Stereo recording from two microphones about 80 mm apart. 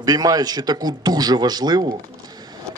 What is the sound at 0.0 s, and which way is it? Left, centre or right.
A man's voice, right.